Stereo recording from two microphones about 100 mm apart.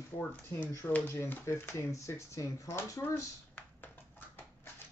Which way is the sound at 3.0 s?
25° left (ahead or behind).